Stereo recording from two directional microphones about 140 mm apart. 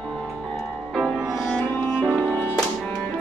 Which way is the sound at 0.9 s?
Centre (ahead or behind).